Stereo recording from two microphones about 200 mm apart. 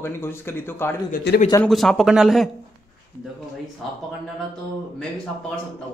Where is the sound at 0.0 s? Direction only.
10° left (ahead or behind).